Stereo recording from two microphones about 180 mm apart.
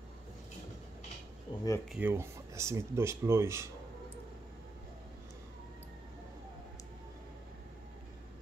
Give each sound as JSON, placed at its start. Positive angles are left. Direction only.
{"t": 1.5, "sound": "speech", "side_deg": 25}
{"t": 1.9, "sound": "speech", "side_deg": -10}